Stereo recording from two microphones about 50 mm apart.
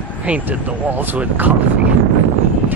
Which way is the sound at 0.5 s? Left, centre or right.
Right.